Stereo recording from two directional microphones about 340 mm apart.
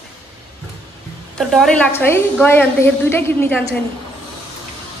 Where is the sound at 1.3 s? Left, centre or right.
Centre.